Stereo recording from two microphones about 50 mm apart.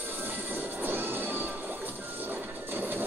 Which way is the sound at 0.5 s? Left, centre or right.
Right.